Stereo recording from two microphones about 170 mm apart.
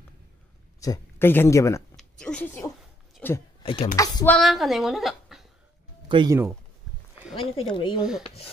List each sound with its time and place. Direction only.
0.7 s speech: 20° left (ahead or behind)
2.0 s a sound: 5° left (ahead or behind)
3.8 s speech: 20° left (ahead or behind)
4.3 s a woman's voice: centre (ahead or behind)
6.0 s speech: 30° right (ahead or behind)
7.3 s speech: 30° left (ahead or behind)